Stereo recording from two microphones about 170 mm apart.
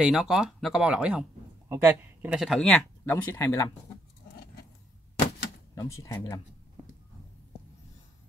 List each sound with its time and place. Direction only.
0.0 s a man's voice: 5° right (ahead or behind)
2.3 s speech: centre (ahead or behind)
3.3 s speech: 15° left (ahead or behind)
5.8 s speech: 20° left (ahead or behind)